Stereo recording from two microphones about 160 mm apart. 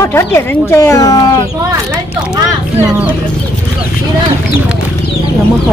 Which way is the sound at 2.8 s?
10° right (ahead or behind).